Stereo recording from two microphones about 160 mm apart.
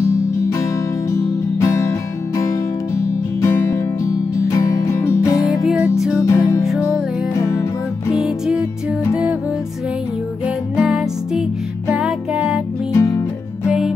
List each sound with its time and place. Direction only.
1.1 s music: 20° left (ahead or behind)
5.4 s music: centre (ahead or behind)
6.2 s music: 20° left (ahead or behind)
8.1 s music: centre (ahead or behind)
10.4 s music: 5° right (ahead or behind)
12.9 s music: 20° left (ahead or behind)
13.7 s music: 5° right (ahead or behind)